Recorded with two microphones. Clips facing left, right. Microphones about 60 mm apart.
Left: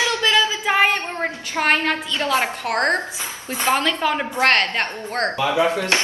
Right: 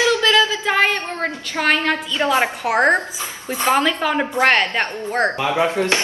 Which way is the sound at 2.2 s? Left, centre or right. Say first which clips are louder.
Right 4 dB; centre.